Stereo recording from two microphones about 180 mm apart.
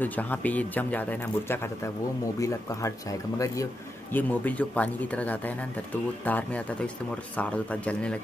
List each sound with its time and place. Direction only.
0.0 s a man's voice: 10° left (ahead or behind)